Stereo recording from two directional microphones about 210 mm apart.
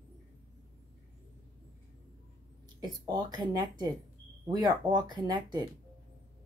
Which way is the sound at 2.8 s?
20° right (ahead or behind).